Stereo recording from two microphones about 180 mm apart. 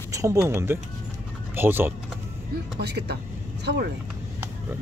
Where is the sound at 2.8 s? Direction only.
65° right (ahead or behind).